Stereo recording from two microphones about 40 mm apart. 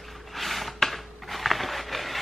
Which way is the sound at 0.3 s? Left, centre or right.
Centre.